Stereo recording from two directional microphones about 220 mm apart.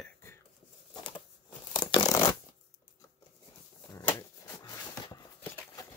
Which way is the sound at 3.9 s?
10° left (ahead or behind).